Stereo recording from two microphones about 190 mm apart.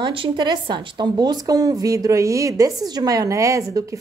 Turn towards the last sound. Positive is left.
turn(degrees=-15)  # may be behind; listen again after turning